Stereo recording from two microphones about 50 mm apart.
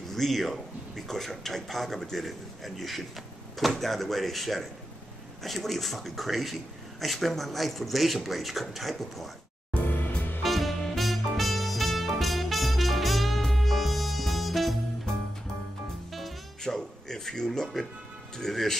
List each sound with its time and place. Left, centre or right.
0.1 s a man's voice: centre
9.8 s music: left
10.4 s music: centre
16.1 s music: centre
16.6 s speech: centre